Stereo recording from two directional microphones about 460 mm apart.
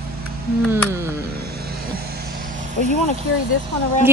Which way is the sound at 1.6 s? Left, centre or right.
Centre.